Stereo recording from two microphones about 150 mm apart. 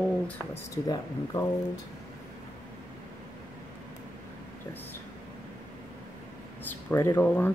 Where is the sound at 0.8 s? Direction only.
25° left (ahead or behind).